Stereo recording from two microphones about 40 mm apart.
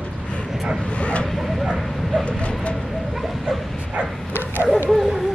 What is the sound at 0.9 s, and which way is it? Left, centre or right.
Vehicle, left.